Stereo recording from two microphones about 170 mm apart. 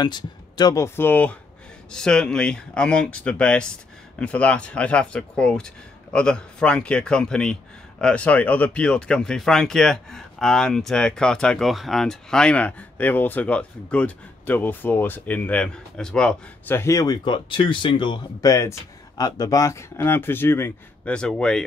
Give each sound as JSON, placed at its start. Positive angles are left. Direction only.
{"t": 0.0, "sound": "speech", "side_deg": 25}